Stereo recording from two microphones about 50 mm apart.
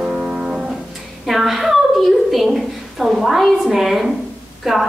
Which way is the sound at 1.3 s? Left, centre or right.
Centre.